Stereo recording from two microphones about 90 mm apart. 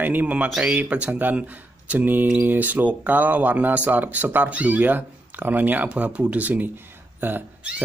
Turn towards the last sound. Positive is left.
turn(degrees=-15)  # may be behind; listen again after turning